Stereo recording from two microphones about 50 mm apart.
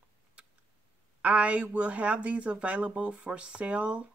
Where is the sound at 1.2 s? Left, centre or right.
Right.